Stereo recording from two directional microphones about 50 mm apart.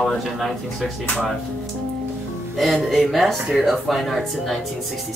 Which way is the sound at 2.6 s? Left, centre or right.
Centre.